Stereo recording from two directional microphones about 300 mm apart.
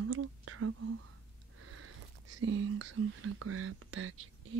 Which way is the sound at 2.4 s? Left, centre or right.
Right.